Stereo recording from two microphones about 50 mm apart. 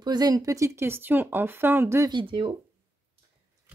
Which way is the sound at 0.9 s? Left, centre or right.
Right.